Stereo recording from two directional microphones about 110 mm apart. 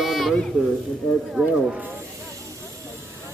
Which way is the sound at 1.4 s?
15° right (ahead or behind).